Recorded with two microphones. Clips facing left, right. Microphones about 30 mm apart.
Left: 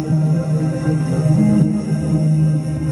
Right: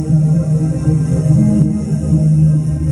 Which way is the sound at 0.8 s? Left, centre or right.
Left.